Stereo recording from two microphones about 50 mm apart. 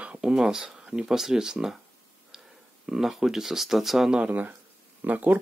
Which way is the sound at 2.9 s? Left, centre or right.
Centre.